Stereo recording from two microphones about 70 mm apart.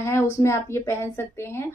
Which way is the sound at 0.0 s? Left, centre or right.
Left.